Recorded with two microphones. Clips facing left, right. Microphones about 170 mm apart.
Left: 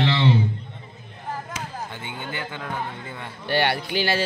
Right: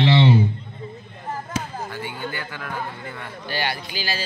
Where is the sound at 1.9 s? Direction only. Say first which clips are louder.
Right 3 dB; 25° left (ahead or behind).